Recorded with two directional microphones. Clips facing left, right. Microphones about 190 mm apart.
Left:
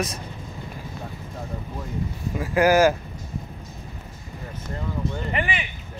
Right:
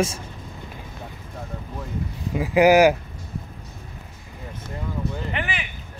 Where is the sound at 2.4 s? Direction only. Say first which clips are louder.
Right 3 dB; 15° right (ahead or behind).